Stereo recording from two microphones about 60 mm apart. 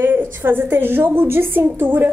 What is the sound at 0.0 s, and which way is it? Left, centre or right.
A woman's voice, right.